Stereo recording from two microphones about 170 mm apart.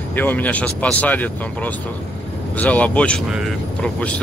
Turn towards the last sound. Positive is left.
turn(degrees=5)  # may be behind; listen again after turning